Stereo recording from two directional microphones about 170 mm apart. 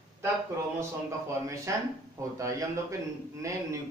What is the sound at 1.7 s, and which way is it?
Speech, 20° right (ahead or behind).